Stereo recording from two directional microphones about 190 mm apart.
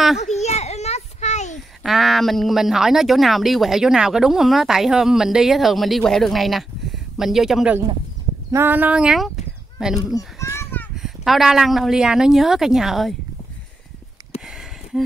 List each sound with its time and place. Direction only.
0.2 s children playing: 35° left (ahead or behind)
1.8 s speech: centre (ahead or behind)
10.1 s children playing: 15° left (ahead or behind)
11.0 s speech: centre (ahead or behind)
14.3 s a sound: 35° left (ahead or behind)